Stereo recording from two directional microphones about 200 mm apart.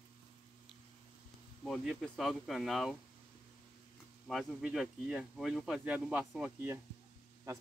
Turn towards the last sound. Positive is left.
turn(degrees=-15)  # may be behind; listen again after turning